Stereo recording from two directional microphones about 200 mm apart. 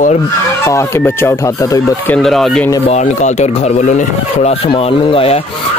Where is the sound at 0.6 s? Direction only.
15° left (ahead or behind).